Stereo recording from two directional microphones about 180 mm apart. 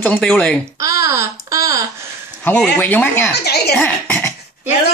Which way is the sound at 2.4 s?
10° left (ahead or behind).